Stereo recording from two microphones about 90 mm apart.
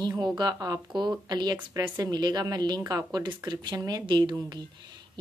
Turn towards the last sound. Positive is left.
turn(degrees=-55)  # may be behind; listen again after turning